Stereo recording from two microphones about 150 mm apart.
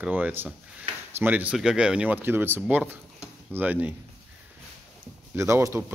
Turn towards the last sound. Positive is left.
turn(degrees=-20)  # may be behind; listen again after turning